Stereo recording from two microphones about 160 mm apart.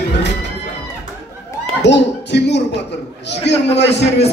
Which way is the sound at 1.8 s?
90° left.